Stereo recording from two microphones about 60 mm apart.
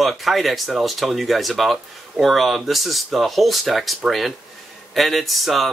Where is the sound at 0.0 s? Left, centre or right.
Centre.